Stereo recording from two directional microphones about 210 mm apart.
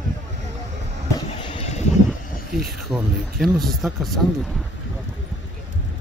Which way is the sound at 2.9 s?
Centre (ahead or behind).